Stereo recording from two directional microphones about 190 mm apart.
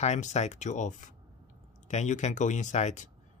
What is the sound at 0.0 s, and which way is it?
Speech, 35° left (ahead or behind).